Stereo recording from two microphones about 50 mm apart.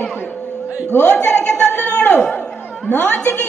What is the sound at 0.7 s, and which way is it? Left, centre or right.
Speech, right.